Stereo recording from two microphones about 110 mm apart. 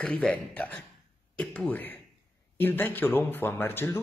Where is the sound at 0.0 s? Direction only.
10° left (ahead or behind).